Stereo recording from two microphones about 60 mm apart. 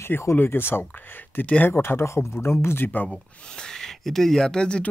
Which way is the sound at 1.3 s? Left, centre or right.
Left.